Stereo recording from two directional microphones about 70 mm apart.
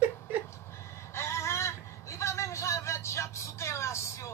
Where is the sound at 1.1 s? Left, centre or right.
Left.